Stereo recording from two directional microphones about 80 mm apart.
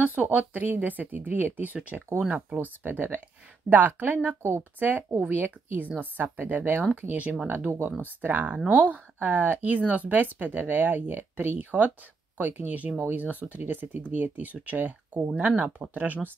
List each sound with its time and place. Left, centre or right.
0.0 s speech: centre
4.4 s speech: right
4.7 s speech: right